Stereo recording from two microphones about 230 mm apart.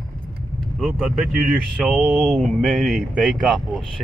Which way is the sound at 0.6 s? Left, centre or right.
Centre.